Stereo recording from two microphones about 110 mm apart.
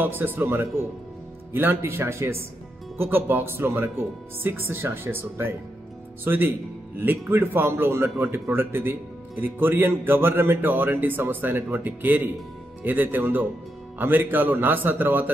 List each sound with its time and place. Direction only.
0.0 s a man's voice: 20° right (ahead or behind)